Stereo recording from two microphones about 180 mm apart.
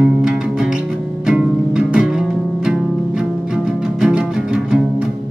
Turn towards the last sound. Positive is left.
turn(degrees=-5)  # may be behind; listen again after turning